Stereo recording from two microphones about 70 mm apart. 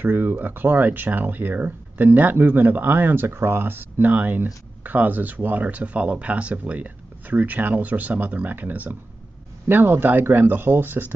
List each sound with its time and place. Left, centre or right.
0.0 s speech: right